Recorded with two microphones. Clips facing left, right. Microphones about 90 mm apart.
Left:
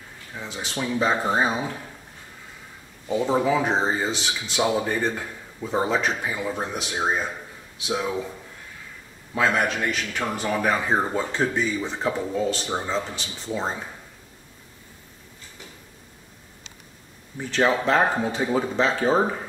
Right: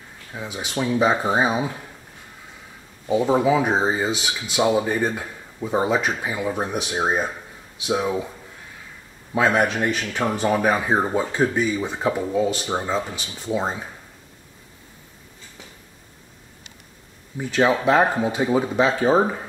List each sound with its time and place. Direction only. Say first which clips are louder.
0.3 s speech: right 3 dB; 10° right (ahead or behind)
3.1 s speech: right 3 dB; 10° right (ahead or behind)
9.3 s a man's voice: right 3 dB; 20° right (ahead or behind)
17.4 s speech: right 2 dB; 10° right (ahead or behind)